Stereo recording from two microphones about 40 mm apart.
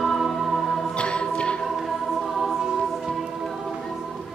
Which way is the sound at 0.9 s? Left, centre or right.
Left.